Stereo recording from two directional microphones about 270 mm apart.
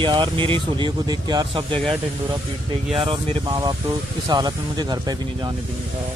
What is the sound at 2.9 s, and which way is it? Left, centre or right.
Speech, centre.